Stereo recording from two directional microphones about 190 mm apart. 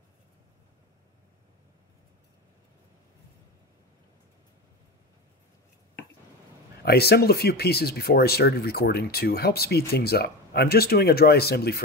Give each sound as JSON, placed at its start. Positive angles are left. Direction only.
{"t": 6.8, "sound": "speech", "side_deg": 55}